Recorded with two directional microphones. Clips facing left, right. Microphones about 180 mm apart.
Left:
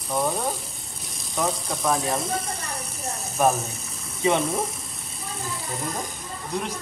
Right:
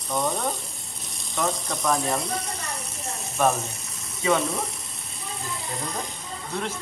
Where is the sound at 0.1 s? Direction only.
5° left (ahead or behind).